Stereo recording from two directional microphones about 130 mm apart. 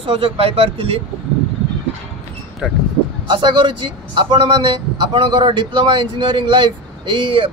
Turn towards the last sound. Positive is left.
turn(degrees=-40)  # may be behind; listen again after turning